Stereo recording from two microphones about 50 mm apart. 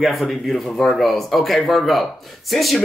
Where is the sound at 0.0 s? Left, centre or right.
Centre.